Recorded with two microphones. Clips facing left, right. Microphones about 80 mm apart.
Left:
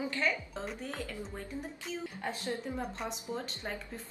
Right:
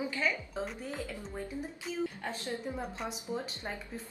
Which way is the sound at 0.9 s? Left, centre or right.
Centre.